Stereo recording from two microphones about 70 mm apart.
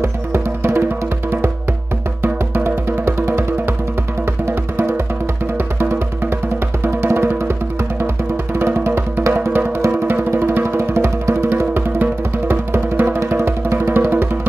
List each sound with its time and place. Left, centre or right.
0.0 s music: right
2.2 s music: right
4.5 s music: right
6.8 s music: right
8.5 s music: right